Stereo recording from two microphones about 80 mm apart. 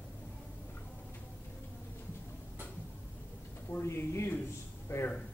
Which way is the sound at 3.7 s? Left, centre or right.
Left.